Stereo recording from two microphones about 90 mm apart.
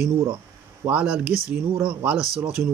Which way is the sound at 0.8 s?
15° right (ahead or behind).